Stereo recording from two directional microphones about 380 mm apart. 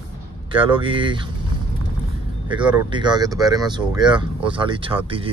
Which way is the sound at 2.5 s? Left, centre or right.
Centre.